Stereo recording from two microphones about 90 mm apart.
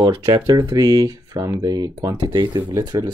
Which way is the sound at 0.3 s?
50° right (ahead or behind).